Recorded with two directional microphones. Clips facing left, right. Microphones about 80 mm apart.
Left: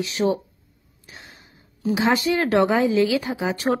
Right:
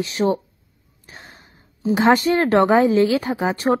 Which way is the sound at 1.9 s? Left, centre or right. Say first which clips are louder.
Right 4 dB; right.